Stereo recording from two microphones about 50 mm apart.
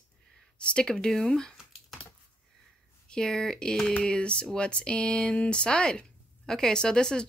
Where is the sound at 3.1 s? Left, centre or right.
Centre.